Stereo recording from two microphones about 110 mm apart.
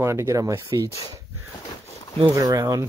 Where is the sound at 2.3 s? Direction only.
30° right (ahead or behind).